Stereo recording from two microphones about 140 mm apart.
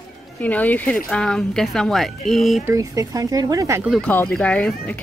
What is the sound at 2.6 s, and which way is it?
Speech, 25° right (ahead or behind).